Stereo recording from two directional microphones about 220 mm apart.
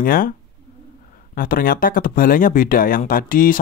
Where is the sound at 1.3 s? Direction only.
40° left (ahead or behind).